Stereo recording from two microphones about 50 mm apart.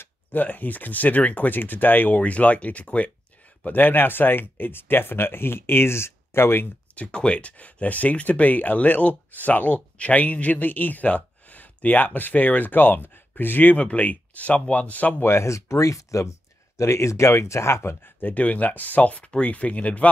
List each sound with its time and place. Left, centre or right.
0.3 s speech: left
3.6 s speech: left
7.0 s speech: left
13.7 s speech: left
15.2 s speech: left
18.0 s speech: left